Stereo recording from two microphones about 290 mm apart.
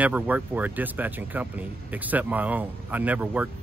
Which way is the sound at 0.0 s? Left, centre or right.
Centre.